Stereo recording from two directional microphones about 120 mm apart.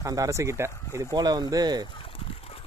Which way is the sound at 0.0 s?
30° right (ahead or behind).